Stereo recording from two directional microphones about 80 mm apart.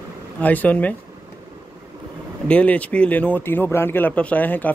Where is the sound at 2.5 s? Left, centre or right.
Centre.